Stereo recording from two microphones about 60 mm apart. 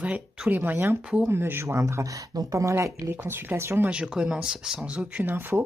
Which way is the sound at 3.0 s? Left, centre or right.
Right.